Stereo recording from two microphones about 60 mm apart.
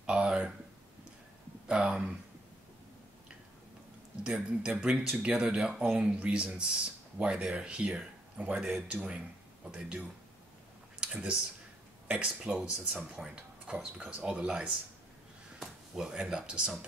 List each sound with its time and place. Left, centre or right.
0.0 s a sound: centre
1.7 s speech: centre
4.2 s speech: centre
8.5 s speech: centre
8.8 s speech: centre
11.0 s a sound: centre
12.1 s speech: centre